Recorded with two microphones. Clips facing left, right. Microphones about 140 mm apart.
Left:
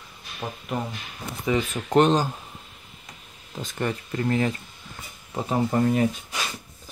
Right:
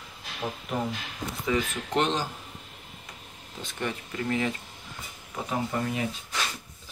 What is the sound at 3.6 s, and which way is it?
Speech, 45° left (ahead or behind).